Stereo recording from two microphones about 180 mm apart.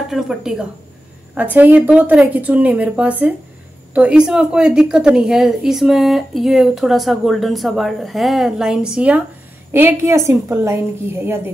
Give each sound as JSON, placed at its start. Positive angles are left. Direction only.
{"t": 0.1, "sound": "a woman's voice", "side_deg": 0}